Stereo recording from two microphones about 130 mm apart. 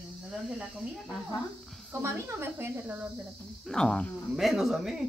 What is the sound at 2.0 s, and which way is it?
Speech, 20° right (ahead or behind).